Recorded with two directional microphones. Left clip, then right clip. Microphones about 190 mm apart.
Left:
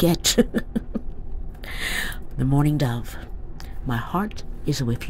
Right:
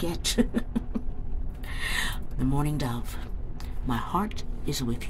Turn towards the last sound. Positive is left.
turn(degrees=25)  # may be behind; listen again after turning